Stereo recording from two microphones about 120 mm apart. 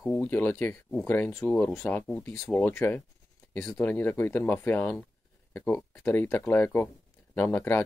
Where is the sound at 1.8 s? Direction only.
20° left (ahead or behind).